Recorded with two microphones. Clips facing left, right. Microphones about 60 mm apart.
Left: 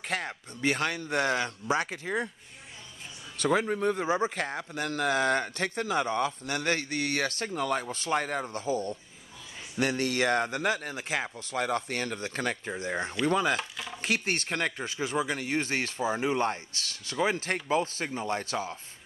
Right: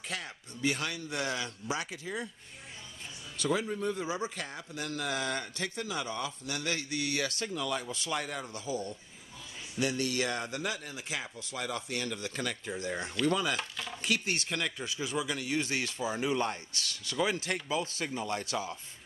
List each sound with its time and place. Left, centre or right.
0.0 s speech: left
3.3 s speech: left
13.6 s a sound: centre
14.0 s speech: left